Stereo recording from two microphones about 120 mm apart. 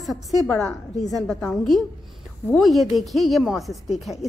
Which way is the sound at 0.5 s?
5° left (ahead or behind).